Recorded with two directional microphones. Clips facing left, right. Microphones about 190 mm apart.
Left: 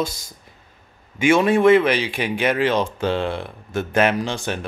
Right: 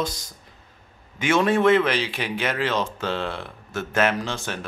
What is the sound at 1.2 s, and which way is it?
Speech, 10° left (ahead or behind).